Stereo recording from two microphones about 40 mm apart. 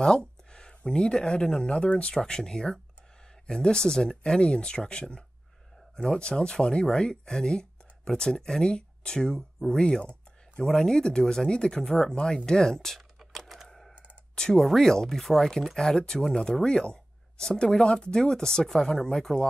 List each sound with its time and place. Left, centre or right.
0.0 s speech: centre
13.7 s typing: centre
14.3 s speech: centre